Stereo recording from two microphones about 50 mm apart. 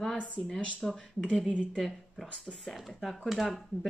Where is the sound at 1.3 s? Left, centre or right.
Centre.